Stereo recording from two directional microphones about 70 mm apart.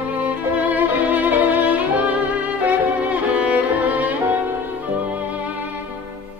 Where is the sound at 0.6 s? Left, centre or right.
Right.